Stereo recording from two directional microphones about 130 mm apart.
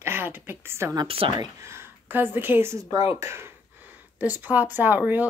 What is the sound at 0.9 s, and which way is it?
Speech, 45° right (ahead or behind).